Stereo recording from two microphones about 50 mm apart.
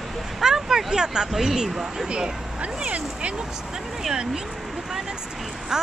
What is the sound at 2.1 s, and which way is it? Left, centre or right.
Speech, centre.